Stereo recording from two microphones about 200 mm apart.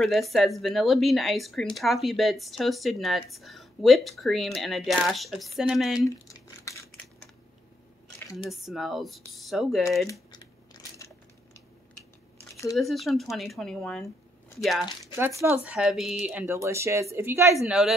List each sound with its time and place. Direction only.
0.0 s speech: centre (ahead or behind)
5.9 s a sound: 15° left (ahead or behind)
8.5 s speech: centre (ahead or behind)
10.3 s biting: 20° left (ahead or behind)
12.7 s speech: centre (ahead or behind)
15.1 s speech: 10° right (ahead or behind)
17.6 s speech: centre (ahead or behind)